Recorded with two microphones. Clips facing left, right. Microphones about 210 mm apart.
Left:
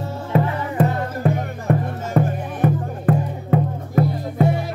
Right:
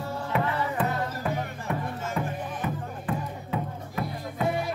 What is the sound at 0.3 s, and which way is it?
Music, 45° left (ahead or behind).